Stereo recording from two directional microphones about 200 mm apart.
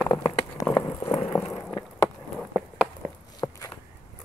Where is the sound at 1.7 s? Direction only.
15° left (ahead or behind).